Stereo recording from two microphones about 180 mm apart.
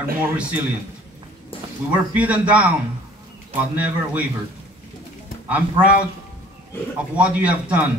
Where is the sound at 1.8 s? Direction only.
10° right (ahead or behind).